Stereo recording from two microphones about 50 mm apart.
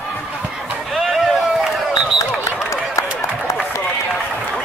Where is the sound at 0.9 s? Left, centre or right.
Centre.